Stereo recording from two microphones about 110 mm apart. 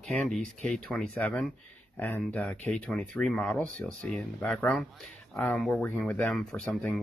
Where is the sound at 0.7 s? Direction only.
Centre (ahead or behind).